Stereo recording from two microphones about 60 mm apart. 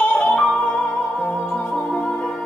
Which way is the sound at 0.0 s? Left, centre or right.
Left.